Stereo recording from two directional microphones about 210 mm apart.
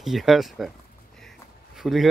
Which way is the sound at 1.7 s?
Centre (ahead or behind).